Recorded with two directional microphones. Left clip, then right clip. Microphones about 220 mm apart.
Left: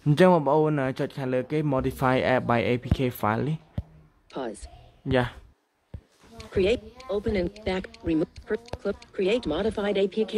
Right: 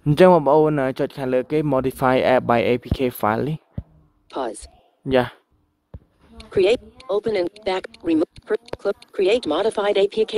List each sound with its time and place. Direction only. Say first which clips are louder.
0.1 s speech: right 6 dB; 25° right (ahead or behind)
4.3 s speech: right 7 dB; centre (ahead or behind)
5.1 s speech: right 6 dB; 25° right (ahead or behind)
6.3 s speech: right 6 dB; centre (ahead or behind)